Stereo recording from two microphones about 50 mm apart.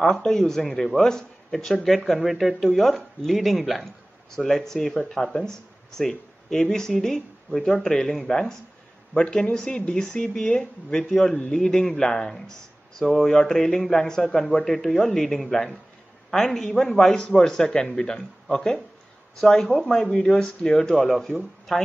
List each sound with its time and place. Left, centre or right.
0.0 s speech: centre